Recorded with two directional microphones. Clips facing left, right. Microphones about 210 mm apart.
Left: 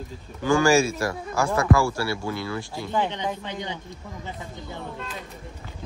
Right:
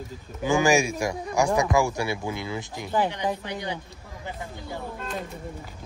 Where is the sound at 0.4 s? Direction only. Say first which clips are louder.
Left 2 dB; 15° right (ahead or behind).